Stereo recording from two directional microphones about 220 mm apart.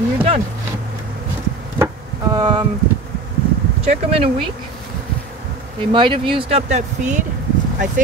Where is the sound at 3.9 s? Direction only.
25° right (ahead or behind).